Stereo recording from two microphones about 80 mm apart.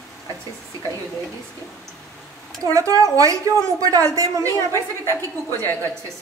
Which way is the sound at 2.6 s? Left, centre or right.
Right.